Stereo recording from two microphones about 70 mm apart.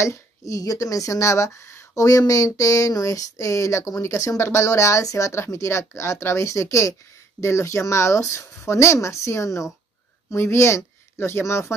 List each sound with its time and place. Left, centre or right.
0.0 s speech: left
2.0 s a woman's voice: left